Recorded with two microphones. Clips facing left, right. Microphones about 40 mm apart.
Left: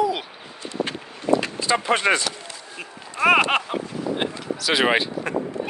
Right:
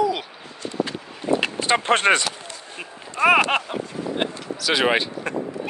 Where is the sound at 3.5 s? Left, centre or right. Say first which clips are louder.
Left 1 dB; centre.